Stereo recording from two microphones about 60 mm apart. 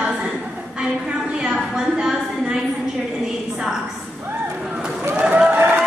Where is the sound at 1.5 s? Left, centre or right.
Centre.